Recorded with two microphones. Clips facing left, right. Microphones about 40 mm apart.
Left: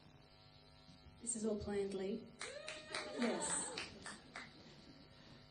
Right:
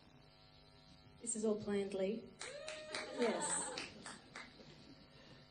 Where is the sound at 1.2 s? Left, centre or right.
Right.